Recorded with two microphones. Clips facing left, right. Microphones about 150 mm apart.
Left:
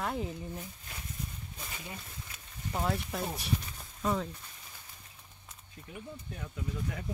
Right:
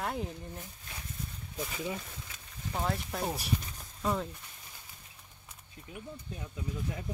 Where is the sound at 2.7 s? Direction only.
Centre (ahead or behind).